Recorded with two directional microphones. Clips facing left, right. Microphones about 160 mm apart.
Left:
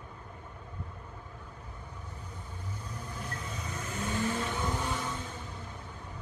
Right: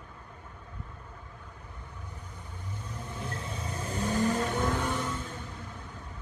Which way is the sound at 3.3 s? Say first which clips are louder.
Right 2 dB; 30° right (ahead or behind).